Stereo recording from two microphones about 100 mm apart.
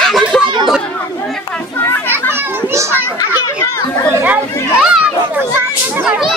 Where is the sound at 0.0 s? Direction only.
5° left (ahead or behind).